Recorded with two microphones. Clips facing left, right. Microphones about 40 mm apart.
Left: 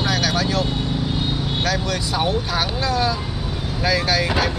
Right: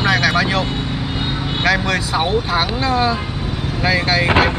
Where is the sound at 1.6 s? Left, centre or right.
Right.